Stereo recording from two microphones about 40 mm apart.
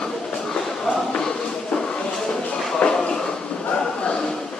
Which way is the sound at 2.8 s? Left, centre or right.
Left.